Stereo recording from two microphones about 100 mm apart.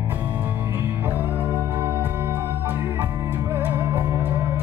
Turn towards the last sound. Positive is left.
turn(degrees=-20)  # may be behind; listen again after turning